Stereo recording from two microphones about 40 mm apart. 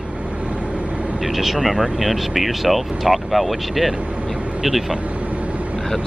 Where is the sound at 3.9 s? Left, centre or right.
Right.